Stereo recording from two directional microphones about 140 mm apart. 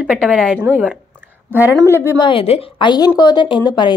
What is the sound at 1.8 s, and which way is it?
Speech, 20° right (ahead or behind).